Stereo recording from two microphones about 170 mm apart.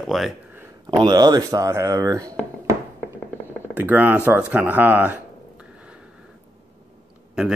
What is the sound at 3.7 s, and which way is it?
Speech, 10° right (ahead or behind).